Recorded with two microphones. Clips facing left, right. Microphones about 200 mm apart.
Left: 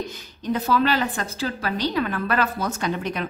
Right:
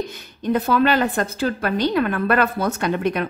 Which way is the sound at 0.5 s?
60° right (ahead or behind).